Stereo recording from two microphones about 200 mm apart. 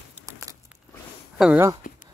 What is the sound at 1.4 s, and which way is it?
Speech, 5° right (ahead or behind).